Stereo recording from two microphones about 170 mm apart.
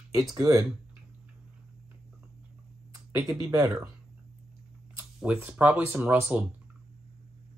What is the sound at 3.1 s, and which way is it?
Speech, 20° right (ahead or behind).